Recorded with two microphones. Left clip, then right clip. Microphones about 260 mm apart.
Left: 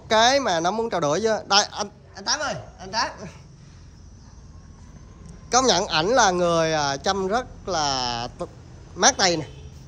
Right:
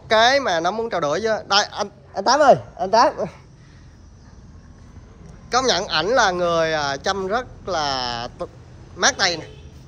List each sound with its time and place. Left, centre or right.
0.1 s speech: centre
2.1 s a woman's voice: centre
5.5 s speech: left